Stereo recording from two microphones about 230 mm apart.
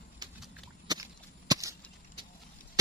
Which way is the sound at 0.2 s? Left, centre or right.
Centre.